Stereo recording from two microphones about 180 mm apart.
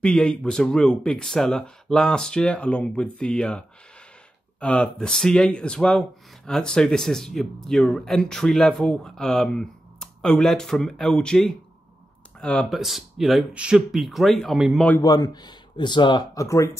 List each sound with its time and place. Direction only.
0.0 s speech: 5° left (ahead or behind)
15.0 s speech: 20° left (ahead or behind)